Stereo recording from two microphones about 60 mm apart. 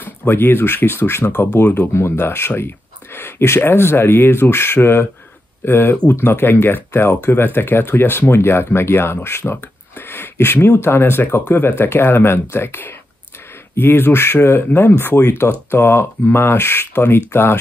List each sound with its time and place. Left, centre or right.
0.0 s speech: left